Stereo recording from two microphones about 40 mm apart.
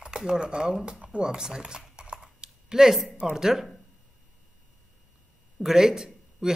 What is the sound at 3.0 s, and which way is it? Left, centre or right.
Speech, right.